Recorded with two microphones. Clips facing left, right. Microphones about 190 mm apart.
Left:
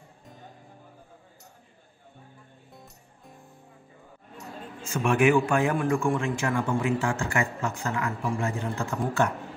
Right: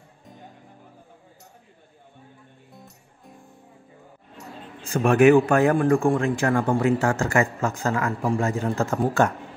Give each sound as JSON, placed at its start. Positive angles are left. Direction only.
{"t": 2.7, "sound": "music", "side_deg": 0}
{"t": 4.4, "sound": "a sound", "side_deg": 0}
{"t": 4.8, "sound": "a man's voice", "side_deg": -35}
{"t": 6.4, "sound": "speech", "side_deg": -55}
{"t": 6.8, "sound": "a man's voice", "side_deg": -40}